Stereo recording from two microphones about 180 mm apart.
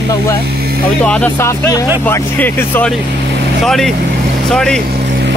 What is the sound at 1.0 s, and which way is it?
Speech, 5° left (ahead or behind).